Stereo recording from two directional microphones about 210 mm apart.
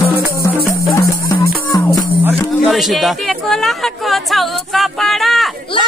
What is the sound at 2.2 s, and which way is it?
Chatter, centre (ahead or behind).